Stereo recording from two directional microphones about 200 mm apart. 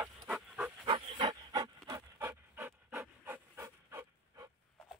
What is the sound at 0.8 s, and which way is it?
Pant, 25° right (ahead or behind).